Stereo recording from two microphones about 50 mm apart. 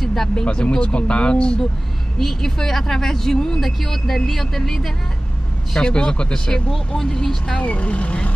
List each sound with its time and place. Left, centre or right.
0.0 s a sound: centre
0.4 s speech: left
2.1 s speech: centre
7.6 s speech: left